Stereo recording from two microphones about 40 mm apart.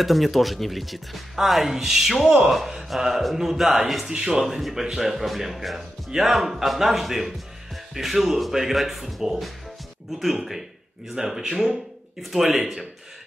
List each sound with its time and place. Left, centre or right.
0.0 s speech: centre
4.1 s speech: centre
11.7 s speech: centre